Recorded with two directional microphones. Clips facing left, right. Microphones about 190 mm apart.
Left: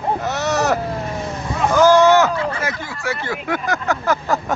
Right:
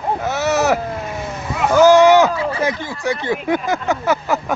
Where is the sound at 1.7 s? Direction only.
10° right (ahead or behind).